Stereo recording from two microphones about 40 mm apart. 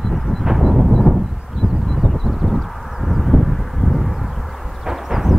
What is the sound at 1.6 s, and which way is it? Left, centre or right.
Crow, centre.